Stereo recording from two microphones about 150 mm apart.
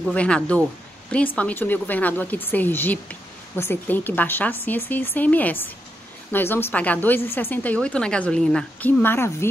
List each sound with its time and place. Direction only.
0.1 s a woman's voice: 10° left (ahead or behind)
9.0 s a woman's voice: 15° left (ahead or behind)